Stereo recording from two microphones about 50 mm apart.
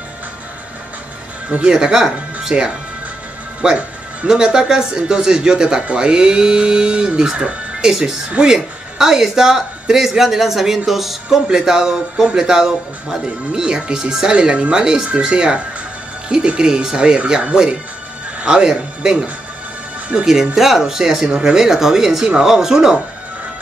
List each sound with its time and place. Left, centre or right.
1.5 s speech: centre
2.5 s speech: right
8.9 s speech: centre
10.9 s music: centre
11.4 s speech: centre
20.1 s speech: right
20.5 s speech: centre